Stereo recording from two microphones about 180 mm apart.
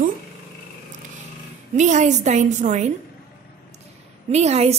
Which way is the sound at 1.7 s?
40° right (ahead or behind).